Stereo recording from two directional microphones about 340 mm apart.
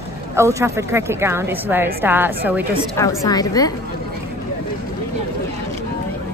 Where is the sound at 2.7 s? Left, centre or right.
Centre.